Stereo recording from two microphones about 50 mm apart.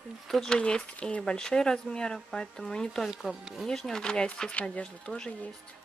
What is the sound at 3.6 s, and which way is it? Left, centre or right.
Speech, centre.